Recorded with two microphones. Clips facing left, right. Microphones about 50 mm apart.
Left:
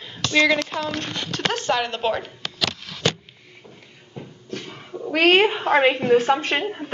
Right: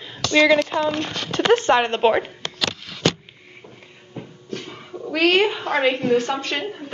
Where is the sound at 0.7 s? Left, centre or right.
Right.